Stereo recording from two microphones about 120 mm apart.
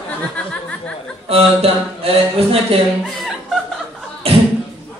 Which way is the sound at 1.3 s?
55° right (ahead or behind).